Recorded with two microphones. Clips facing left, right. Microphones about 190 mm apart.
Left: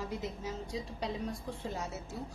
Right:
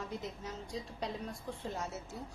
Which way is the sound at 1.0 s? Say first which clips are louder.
Left 3 dB; centre (ahead or behind).